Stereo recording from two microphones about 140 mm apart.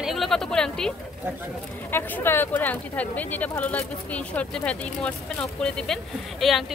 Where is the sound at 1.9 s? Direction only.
15° left (ahead or behind).